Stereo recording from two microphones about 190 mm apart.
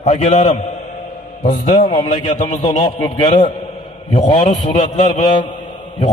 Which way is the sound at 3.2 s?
25° left (ahead or behind).